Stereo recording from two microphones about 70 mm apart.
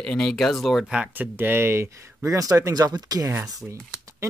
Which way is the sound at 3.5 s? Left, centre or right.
Right.